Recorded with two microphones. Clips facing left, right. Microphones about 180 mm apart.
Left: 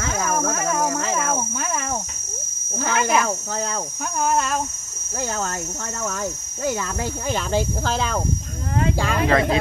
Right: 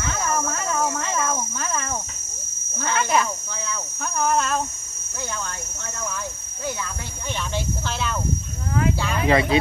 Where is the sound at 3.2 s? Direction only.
45° left (ahead or behind).